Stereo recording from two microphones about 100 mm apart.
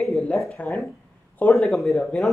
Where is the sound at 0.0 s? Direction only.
5° left (ahead or behind).